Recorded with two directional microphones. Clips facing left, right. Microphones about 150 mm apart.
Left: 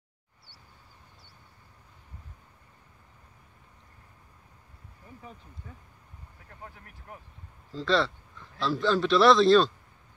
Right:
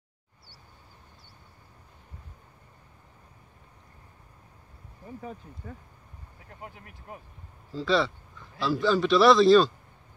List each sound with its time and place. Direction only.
5.0 s speech: 45° right (ahead or behind)
6.5 s speech: 20° right (ahead or behind)
7.7 s a man's voice: 5° right (ahead or behind)